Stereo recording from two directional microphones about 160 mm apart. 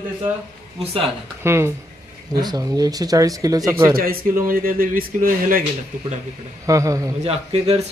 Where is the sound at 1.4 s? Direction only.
15° right (ahead or behind).